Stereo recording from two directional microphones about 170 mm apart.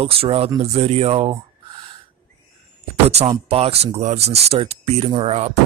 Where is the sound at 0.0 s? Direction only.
35° right (ahead or behind).